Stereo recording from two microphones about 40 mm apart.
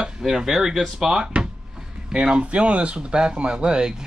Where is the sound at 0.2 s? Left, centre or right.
Centre.